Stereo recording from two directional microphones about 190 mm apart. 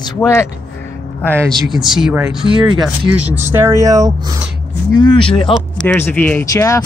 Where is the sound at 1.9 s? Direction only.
5° right (ahead or behind).